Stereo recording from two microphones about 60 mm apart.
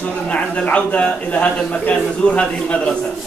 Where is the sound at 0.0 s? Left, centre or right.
Left.